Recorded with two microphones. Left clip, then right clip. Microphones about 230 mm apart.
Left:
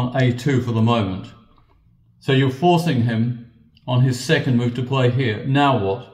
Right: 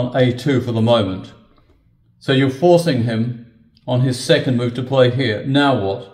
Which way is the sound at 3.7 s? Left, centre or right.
Centre.